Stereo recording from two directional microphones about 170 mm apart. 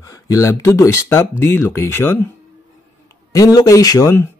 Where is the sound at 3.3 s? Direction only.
20° left (ahead or behind).